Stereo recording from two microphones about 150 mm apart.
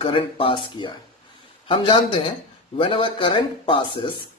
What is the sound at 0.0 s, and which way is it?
Speech, 35° left (ahead or behind).